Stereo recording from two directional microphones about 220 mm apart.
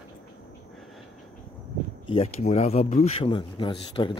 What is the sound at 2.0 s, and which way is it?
Speech, 30° left (ahead or behind).